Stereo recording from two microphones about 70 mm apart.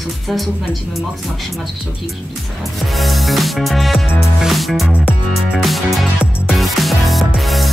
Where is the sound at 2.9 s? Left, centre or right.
Centre.